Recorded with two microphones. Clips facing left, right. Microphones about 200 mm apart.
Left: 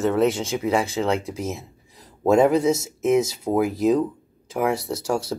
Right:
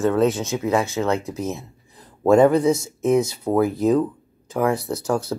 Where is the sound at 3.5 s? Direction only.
10° left (ahead or behind).